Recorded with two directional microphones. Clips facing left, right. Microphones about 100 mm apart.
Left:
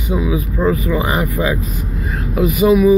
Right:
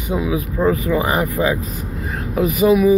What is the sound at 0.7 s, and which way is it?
Speech, 45° right (ahead or behind).